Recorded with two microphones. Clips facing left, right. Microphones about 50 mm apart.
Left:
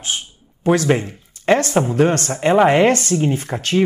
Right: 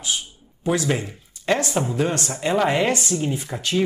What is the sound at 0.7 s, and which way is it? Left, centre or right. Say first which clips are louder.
Speech: left 6 dB; left.